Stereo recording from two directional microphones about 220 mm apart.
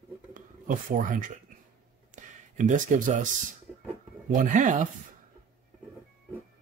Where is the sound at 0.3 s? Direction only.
35° right (ahead or behind).